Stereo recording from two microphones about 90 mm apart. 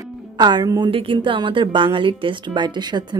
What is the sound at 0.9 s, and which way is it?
Speech, 80° right.